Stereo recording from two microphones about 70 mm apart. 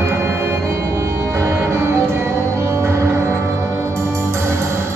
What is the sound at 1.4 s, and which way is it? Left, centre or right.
Music, right.